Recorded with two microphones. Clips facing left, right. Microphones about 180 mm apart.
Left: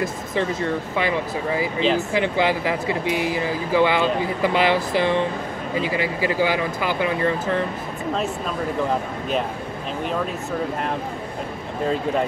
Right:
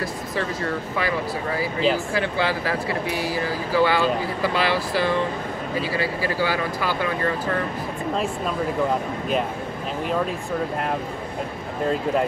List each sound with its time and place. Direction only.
0.0 s speech: 20° left (ahead or behind)